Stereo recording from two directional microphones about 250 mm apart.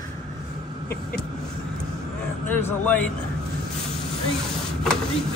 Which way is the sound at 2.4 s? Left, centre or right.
Centre.